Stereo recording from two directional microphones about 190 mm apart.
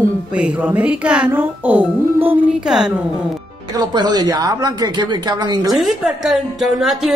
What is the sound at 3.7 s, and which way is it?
Speech, 20° right (ahead or behind).